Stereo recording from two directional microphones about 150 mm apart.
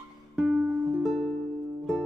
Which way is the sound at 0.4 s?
10° right (ahead or behind).